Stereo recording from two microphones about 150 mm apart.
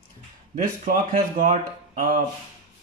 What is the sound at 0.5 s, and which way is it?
Speech, 65° right (ahead or behind).